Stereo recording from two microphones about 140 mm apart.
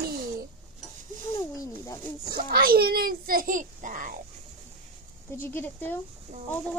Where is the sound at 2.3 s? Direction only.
90° right; by 4.1 s 70° right (ahead or behind).